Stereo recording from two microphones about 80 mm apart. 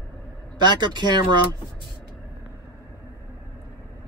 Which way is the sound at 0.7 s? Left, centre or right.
Right.